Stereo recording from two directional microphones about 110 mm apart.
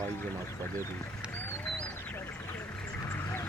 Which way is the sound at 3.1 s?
20° left (ahead or behind).